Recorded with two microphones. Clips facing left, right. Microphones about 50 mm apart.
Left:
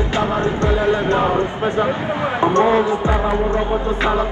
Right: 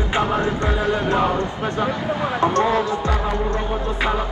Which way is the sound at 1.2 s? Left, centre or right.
Left.